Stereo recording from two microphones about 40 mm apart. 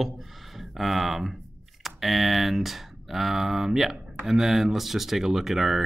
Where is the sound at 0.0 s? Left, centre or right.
Centre.